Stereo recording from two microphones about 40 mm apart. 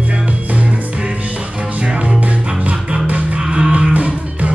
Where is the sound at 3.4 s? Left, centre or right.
Centre.